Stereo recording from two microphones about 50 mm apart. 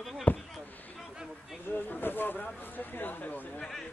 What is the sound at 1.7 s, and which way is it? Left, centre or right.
Speech, left.